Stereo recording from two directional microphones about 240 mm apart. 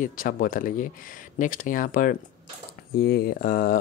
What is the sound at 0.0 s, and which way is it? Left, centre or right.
Speech, left.